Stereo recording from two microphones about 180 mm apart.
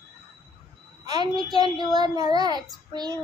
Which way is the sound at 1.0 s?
25° right (ahead or behind).